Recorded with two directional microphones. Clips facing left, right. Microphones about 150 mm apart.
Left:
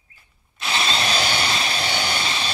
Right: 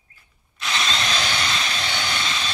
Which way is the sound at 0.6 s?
30° left (ahead or behind).